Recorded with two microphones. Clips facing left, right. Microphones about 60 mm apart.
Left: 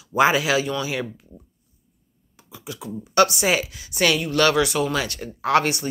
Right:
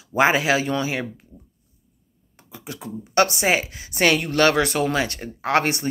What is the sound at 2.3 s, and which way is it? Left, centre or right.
Speech, right.